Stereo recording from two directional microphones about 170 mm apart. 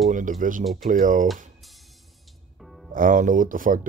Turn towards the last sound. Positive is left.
turn(degrees=-55)  # may be behind; listen again after turning